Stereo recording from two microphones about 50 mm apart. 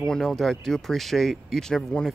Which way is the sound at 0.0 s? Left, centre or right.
Centre.